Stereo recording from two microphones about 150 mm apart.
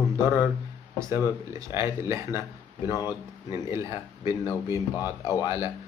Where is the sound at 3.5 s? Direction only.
20° right (ahead or behind).